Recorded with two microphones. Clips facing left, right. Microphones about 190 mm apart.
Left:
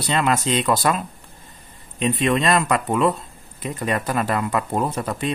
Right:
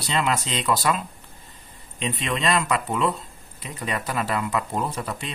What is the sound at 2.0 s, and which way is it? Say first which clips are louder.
A man's voice: left 6 dB; 50° left (ahead or behind).